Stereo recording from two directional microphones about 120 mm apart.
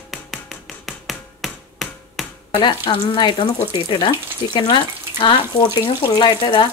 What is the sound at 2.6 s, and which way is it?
A woman's voice, 45° left (ahead or behind).